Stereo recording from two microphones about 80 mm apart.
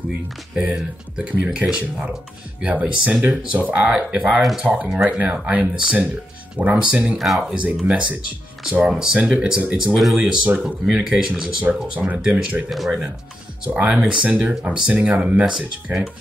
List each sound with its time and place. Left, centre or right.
0.6 s speech: centre
7.2 s speech: centre
7.5 s speech: centre
9.9 s speech: centre
12.6 s speech: centre
13.7 s speech: centre